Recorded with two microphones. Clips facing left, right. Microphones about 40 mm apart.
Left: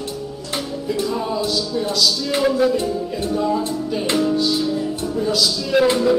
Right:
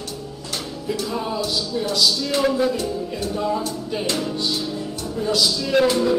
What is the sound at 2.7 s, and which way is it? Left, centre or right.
Music, left.